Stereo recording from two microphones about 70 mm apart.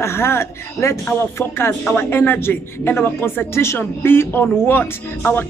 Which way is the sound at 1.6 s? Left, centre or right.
Left.